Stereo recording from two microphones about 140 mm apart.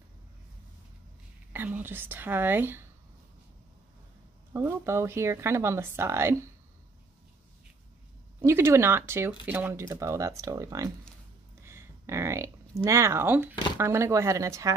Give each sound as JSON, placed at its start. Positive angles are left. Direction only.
{"t": 1.5, "sound": "speech", "side_deg": -15}
{"t": 4.6, "sound": "speech", "side_deg": -20}
{"t": 8.4, "sound": "speech", "side_deg": -20}